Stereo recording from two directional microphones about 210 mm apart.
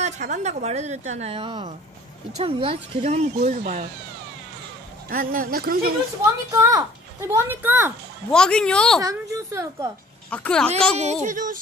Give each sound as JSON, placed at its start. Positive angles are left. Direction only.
{"t": 0.0, "sound": "a woman's voice", "side_deg": -35}
{"t": 5.1, "sound": "speech", "side_deg": -40}
{"t": 6.2, "sound": "speech", "side_deg": -15}
{"t": 8.3, "sound": "a woman's voice", "side_deg": 5}
{"t": 9.0, "sound": "speech", "side_deg": -15}
{"t": 10.3, "sound": "a woman's voice", "side_deg": 5}
{"t": 11.2, "sound": "a woman's voice", "side_deg": -40}